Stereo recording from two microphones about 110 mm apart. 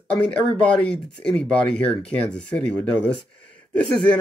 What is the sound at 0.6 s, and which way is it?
Speech, 10° left (ahead or behind).